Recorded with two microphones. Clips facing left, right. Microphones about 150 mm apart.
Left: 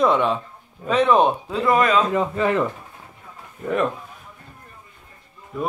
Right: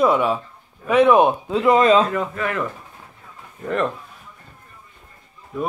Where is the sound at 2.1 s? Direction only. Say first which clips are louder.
Left 4 dB; 25° left (ahead or behind).